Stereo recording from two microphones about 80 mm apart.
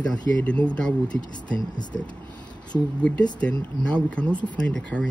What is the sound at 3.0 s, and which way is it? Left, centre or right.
Speech, centre.